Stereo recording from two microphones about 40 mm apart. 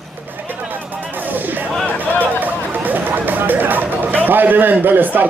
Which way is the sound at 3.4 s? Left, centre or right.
Right.